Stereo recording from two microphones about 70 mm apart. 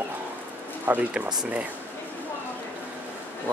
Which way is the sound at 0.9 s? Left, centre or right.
Right.